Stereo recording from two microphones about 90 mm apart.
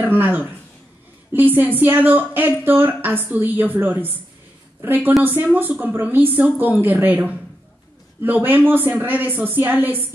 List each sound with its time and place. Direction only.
0.0 s a woman's voice: 20° right (ahead or behind)